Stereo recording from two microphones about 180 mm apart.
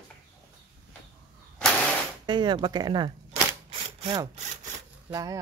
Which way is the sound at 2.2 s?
25° right (ahead or behind).